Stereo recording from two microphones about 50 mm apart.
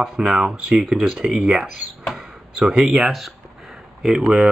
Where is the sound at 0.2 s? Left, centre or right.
Centre.